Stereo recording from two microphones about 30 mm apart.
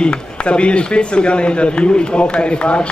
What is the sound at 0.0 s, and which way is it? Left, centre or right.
Speech, left.